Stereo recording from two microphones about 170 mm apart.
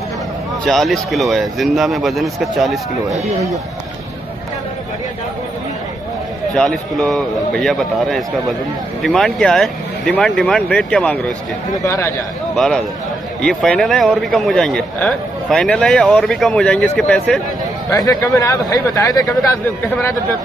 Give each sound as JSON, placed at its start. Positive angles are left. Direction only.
{"t": 0.7, "sound": "speech", "side_deg": 0}
{"t": 6.5, "sound": "speech", "side_deg": 5}
{"t": 11.8, "sound": "a man's voice", "side_deg": 15}
{"t": 12.5, "sound": "speech", "side_deg": 5}
{"t": 17.9, "sound": "speech", "side_deg": 20}